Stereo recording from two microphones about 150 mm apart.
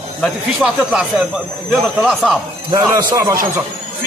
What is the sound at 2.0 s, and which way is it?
Speech, centre (ahead or behind).